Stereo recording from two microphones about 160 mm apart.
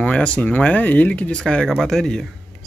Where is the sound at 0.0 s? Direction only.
5° left (ahead or behind).